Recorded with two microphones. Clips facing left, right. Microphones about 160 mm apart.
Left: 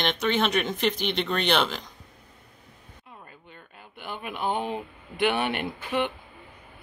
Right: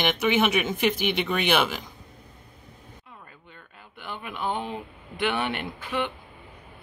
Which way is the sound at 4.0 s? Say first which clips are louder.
Left 1 dB; 15° left (ahead or behind).